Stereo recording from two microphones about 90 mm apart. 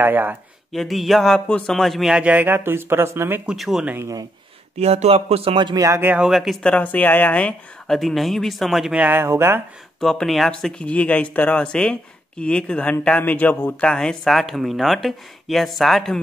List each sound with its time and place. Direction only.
0.0 s speech: 20° right (ahead or behind)
0.7 s speech: centre (ahead or behind)
2.1 s speech: 15° right (ahead or behind)
3.4 s speech: 5° right (ahead or behind)
4.0 s speech: 45° right (ahead or behind)
5.1 s speech: 90° right
5.8 s speech: 30° right (ahead or behind)
6.1 s speech: 5° right (ahead or behind)
6.6 s speech: 15° left (ahead or behind); by 8.9 s centre (ahead or behind)
8.9 s speech: 15° right (ahead or behind)
9.2 s speech: 25° right (ahead or behind)
9.9 s speech: 5° left (ahead or behind)